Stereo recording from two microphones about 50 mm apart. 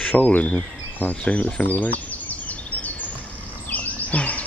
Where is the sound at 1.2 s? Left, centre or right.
Left.